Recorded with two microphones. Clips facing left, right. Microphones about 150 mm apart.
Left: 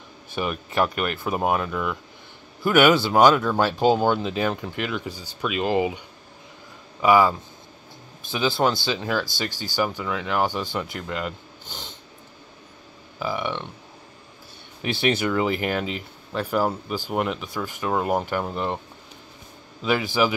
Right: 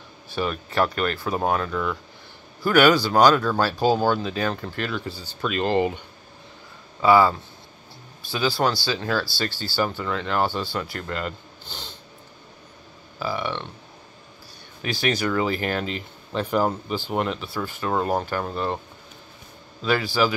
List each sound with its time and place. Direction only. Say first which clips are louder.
0.3 s speech: right 1 dB; 15° left (ahead or behind)
13.2 s speech: even; 15° left (ahead or behind)
14.8 s speech: left 2 dB; 25° left (ahead or behind)
19.8 s speech: even; 15° left (ahead or behind)